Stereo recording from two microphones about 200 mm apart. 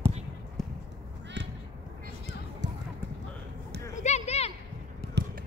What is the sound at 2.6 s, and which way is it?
Clip-clop, 60° right (ahead or behind).